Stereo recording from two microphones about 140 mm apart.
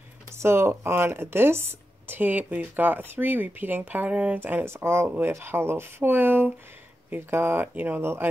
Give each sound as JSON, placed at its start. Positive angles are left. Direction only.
{"t": 0.4, "sound": "speech", "side_deg": -20}